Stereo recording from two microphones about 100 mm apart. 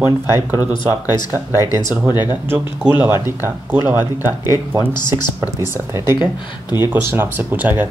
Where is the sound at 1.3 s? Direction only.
30° right (ahead or behind).